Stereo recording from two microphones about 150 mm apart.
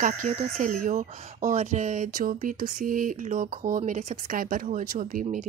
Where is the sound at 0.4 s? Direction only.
60° right (ahead or behind).